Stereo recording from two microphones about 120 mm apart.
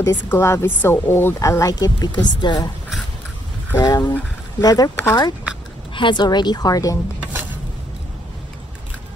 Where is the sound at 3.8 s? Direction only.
30° left (ahead or behind).